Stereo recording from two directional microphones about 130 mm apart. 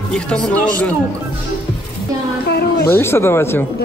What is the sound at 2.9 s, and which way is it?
Speech, 20° left (ahead or behind).